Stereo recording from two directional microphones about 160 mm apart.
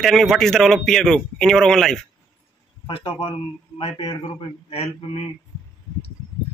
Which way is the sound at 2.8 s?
35° left (ahead or behind).